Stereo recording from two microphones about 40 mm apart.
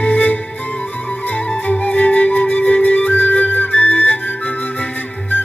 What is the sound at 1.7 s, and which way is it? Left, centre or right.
Flute, left.